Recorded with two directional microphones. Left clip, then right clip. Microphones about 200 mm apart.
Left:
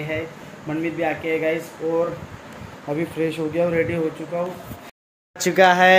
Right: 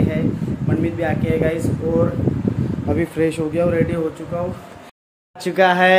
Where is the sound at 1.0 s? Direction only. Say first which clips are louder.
Right 1 dB; 10° right (ahead or behind).